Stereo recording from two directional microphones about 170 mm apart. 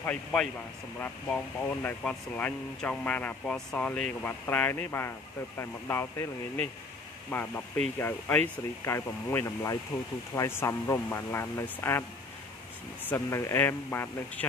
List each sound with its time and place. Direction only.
0.0 s speech: 5° left (ahead or behind)
8.8 s speech: 15° left (ahead or behind)
13.1 s speech: 15° left (ahead or behind)